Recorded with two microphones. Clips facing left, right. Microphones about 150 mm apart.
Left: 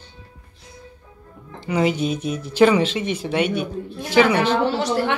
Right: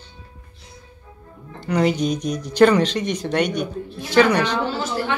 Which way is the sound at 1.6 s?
5° left (ahead or behind).